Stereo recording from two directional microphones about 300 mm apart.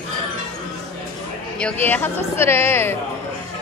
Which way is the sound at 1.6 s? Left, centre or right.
Centre.